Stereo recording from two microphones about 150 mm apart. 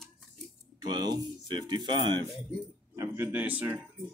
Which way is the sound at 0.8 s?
30° right (ahead or behind).